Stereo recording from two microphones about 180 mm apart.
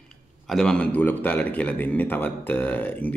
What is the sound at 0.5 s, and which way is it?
A man's voice, 5° left (ahead or behind).